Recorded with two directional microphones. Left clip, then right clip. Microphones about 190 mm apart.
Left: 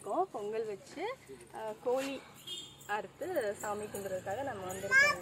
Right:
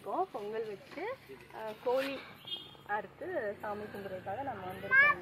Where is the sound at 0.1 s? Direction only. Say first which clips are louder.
Left 1 dB; 30° left (ahead or behind).